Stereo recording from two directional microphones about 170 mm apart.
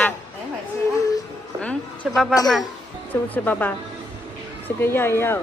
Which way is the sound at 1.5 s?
5° left (ahead or behind).